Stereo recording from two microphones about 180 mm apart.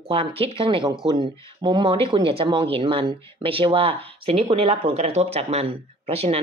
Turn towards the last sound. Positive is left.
turn(degrees=-35)  # may be behind; listen again after turning